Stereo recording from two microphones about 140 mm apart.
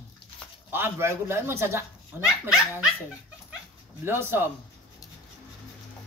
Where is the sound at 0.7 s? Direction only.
15° right (ahead or behind).